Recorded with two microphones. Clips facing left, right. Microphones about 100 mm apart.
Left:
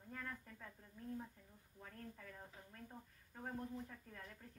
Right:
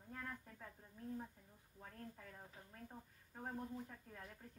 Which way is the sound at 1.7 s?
10° right (ahead or behind).